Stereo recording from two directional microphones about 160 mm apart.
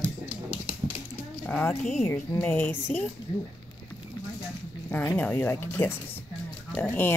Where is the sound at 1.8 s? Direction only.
45° left (ahead or behind).